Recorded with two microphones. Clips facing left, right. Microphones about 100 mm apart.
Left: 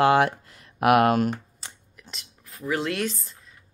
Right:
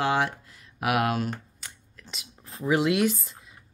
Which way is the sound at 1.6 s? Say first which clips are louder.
Left 2 dB; 30° left (ahead or behind).